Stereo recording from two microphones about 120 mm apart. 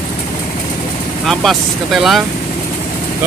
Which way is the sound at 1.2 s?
5° left (ahead or behind).